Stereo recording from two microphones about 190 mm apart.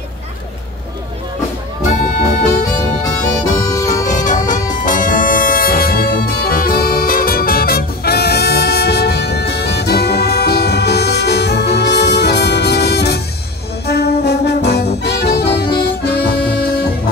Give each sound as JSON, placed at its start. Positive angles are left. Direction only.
{"t": 1.9, "sound": "music", "side_deg": 40}
{"t": 3.4, "sound": "music", "side_deg": 20}
{"t": 4.2, "sound": "music", "side_deg": 40}
{"t": 13.8, "sound": "brass instrument", "side_deg": 60}
{"t": 16.1, "sound": "music", "side_deg": 60}